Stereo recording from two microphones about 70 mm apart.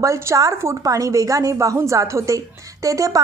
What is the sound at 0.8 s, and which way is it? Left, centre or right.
Speech, right.